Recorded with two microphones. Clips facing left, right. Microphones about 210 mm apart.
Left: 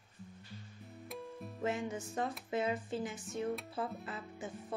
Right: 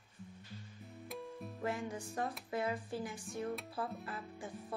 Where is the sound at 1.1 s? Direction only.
Centre (ahead or behind).